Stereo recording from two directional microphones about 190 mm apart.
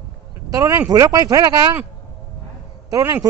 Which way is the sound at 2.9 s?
20° right (ahead or behind).